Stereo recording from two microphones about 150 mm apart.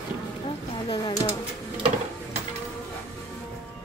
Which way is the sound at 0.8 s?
25° left (ahead or behind).